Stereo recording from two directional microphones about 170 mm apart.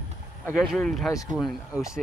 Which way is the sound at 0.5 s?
Centre (ahead or behind).